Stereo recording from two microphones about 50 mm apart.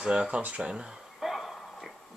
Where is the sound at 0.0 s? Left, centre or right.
Centre.